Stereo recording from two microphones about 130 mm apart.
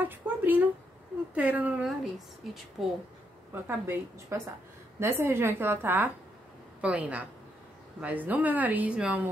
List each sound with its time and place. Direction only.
0.0 s a sound: 15° right (ahead or behind)
1.3 s a woman's voice: 10° right (ahead or behind)
1.9 s speech: centre (ahead or behind)
3.6 s a woman's voice: 15° right (ahead or behind)